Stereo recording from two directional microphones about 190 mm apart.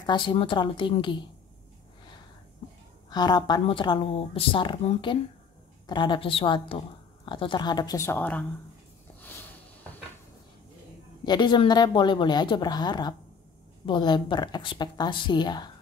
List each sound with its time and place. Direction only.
0.0 s speech: 25° left (ahead or behind)
3.1 s speech: 20° left (ahead or behind)
9.2 s sniff: 10° left (ahead or behind)
11.2 s speech: 25° left (ahead or behind)